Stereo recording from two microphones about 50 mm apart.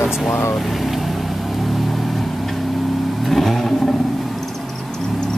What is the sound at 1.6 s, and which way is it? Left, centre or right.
Vehicle, centre.